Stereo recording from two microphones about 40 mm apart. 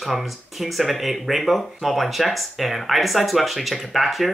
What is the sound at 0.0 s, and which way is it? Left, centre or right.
Speech, centre.